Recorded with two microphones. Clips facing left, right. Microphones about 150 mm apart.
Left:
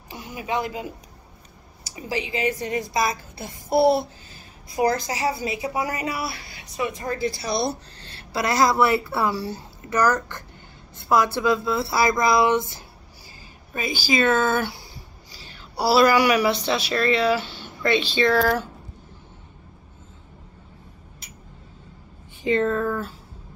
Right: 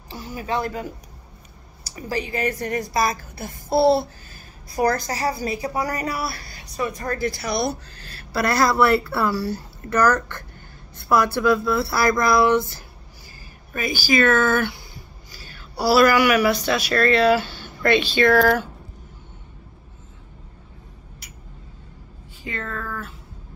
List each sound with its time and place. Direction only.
0.1 s speech: 15° left (ahead or behind)
2.1 s a woman's voice: 45° right (ahead or behind)
2.4 s a woman's voice: 20° left (ahead or behind)
5.2 s a woman's voice: 45° right (ahead or behind)
6.8 s a woman's voice: 20° left (ahead or behind)
18.3 s speech: 60° right (ahead or behind)
22.4 s a woman's voice: 20° left (ahead or behind)